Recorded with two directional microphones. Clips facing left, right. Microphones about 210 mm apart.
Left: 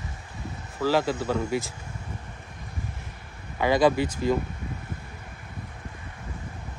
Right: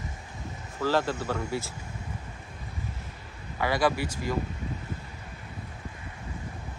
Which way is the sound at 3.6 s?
20° left (ahead or behind).